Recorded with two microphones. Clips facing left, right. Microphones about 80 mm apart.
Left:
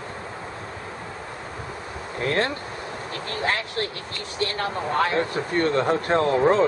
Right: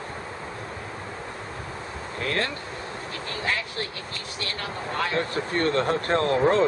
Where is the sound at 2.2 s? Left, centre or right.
Left.